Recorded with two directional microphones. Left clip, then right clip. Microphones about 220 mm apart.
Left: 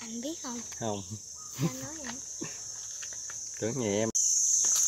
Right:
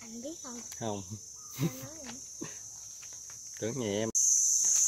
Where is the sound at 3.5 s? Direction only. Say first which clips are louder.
Left 3 dB; centre (ahead or behind).